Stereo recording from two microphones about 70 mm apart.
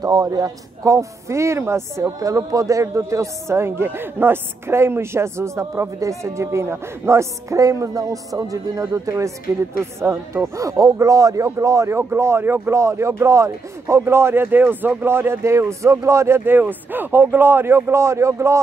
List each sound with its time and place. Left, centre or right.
0.0 s speech: right
2.0 s speech: right
12.0 s speech: right